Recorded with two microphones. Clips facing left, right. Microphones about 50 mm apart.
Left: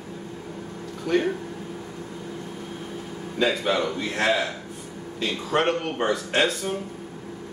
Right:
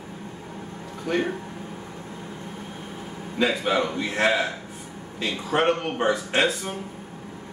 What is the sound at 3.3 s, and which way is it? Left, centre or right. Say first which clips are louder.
Speech: even; centre.